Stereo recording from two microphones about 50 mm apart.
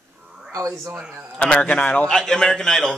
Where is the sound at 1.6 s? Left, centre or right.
Left.